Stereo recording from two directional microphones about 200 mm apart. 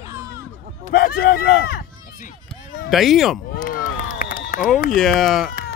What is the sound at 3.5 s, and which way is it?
Run, 45° left (ahead or behind).